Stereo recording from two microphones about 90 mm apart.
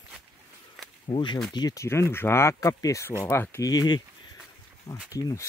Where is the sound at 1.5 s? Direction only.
45° left (ahead or behind).